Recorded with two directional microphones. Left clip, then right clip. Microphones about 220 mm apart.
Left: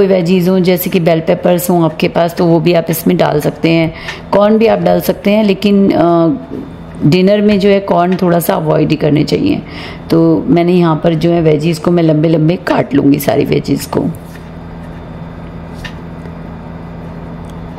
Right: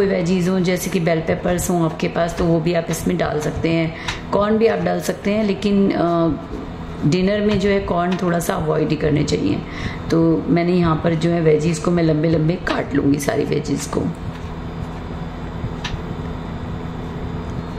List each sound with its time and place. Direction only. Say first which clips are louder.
0.0 s speech: left 8 dB; 35° left (ahead or behind)